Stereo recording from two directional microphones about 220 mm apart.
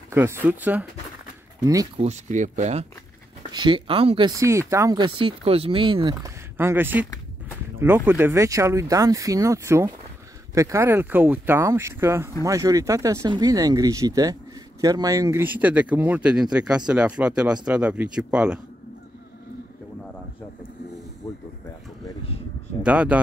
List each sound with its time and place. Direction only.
0.1 s speech: 10° right (ahead or behind)
2.0 s speech: 30° right (ahead or behind)
4.4 s speech: 15° right (ahead or behind)
22.8 s speech: 5° right (ahead or behind)